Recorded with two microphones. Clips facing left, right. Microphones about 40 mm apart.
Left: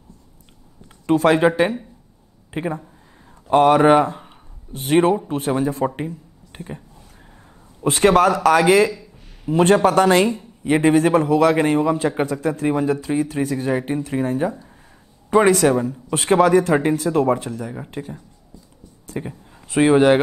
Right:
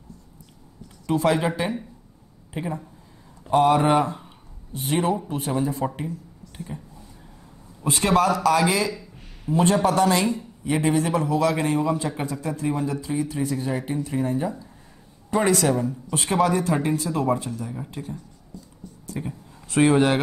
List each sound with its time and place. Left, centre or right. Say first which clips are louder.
1.0 s speech: left 6 dB; left
2.5 s speech: left 5 dB; left
4.7 s a man's voice: left 7 dB; left
7.8 s a man's voice: left 6 dB; left
10.6 s a man's voice: left 7 dB; left
18.0 s speech: left 3 dB; left